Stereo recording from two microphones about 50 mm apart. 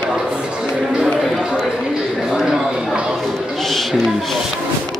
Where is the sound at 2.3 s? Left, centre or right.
Centre.